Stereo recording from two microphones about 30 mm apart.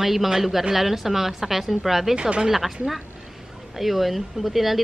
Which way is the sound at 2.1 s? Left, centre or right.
Right.